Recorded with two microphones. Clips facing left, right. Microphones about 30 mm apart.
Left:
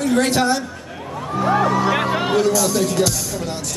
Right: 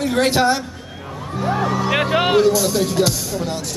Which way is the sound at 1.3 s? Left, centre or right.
Centre.